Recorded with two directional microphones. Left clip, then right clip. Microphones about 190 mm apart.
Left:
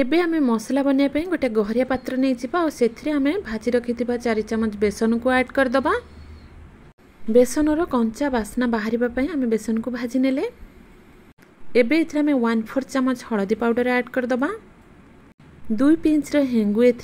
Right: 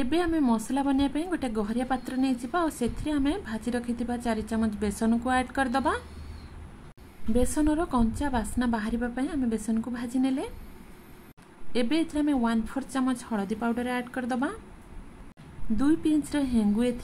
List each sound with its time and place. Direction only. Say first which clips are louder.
0.0 s a woman's voice: left 6 dB; 20° left (ahead or behind)
7.3 s a woman's voice: left 9 dB; 20° left (ahead or behind)
11.7 s a woman's voice: left 9 dB; 20° left (ahead or behind)
15.7 s a woman's voice: left 7 dB; 20° left (ahead or behind)